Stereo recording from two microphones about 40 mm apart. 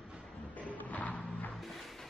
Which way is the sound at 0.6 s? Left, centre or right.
Left.